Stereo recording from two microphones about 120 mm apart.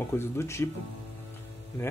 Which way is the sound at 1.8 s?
20° left (ahead or behind).